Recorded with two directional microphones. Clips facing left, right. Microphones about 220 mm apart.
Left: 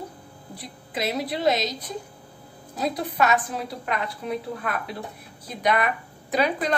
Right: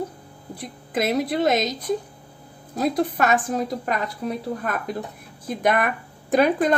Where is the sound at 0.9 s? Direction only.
50° right (ahead or behind).